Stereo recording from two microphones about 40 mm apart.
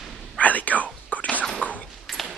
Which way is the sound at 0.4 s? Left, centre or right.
Left.